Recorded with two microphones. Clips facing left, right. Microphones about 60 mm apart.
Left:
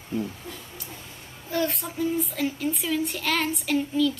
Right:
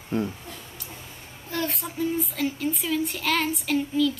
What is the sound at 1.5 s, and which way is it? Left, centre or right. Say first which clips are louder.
A child's voice: left 3 dB; centre.